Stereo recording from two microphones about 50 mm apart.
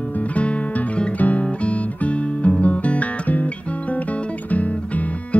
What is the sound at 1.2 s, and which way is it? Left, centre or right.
Music, left.